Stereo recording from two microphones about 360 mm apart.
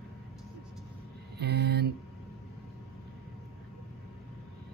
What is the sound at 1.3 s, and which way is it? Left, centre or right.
Speech, right.